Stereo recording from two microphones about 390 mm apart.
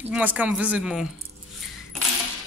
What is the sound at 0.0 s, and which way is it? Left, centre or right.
Speech, centre.